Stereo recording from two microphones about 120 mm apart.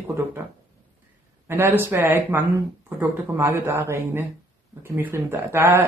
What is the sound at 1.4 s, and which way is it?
Speech, 20° right (ahead or behind).